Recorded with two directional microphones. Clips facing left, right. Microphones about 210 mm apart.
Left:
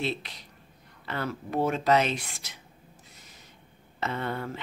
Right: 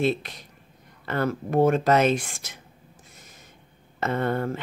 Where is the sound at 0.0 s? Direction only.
50° right (ahead or behind).